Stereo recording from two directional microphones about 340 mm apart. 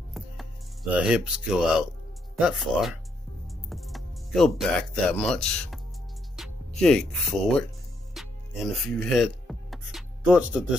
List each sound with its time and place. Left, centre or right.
0.9 s speech: centre
8.8 s music: centre